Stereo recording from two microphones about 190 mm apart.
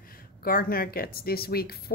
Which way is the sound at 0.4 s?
50° left (ahead or behind).